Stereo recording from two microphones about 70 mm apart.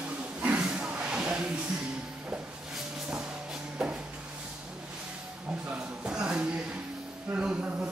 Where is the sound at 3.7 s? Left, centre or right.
Centre.